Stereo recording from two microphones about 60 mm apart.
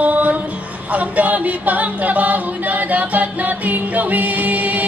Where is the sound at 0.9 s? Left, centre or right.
Right.